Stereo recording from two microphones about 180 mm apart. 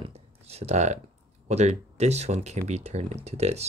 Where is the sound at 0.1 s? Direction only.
35° right (ahead or behind).